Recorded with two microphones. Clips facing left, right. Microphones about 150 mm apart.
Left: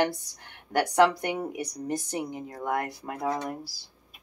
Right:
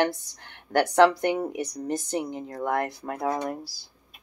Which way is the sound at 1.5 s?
10° left (ahead or behind).